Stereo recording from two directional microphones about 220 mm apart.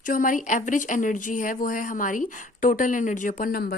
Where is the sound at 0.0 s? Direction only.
40° left (ahead or behind).